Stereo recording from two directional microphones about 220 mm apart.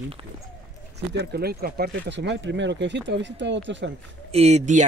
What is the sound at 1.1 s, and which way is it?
Speech, 50° right (ahead or behind).